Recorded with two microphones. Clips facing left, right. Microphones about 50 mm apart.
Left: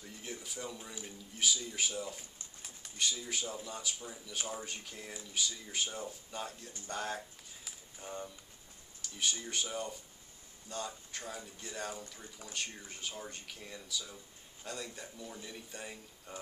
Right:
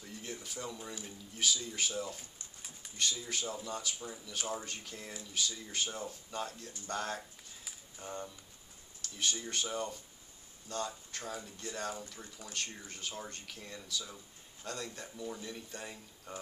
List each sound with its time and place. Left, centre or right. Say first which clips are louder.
0.0 s speech: right 1 dB; centre
7.6 s a sound: right 1 dB; centre
9.0 s speech: even; centre